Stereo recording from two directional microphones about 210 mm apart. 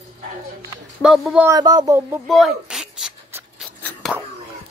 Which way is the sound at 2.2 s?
Centre (ahead or behind).